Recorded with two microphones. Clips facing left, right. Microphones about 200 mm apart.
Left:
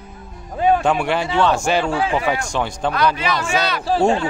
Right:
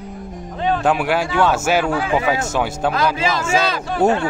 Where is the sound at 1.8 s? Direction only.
25° left (ahead or behind).